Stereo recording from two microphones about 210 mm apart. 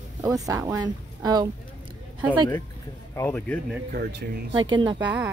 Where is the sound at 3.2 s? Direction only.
10° left (ahead or behind).